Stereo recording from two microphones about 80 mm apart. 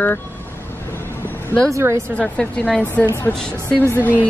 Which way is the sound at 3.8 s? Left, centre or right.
Left.